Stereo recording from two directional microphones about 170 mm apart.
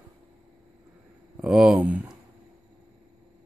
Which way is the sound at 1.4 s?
5° right (ahead or behind).